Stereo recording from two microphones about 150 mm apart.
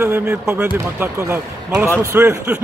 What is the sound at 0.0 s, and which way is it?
A man's voice, 15° right (ahead or behind).